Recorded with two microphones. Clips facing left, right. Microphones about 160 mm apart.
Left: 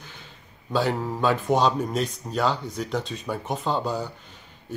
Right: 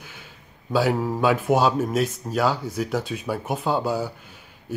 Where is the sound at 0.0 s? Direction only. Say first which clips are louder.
Right 1 dB; 10° right (ahead or behind).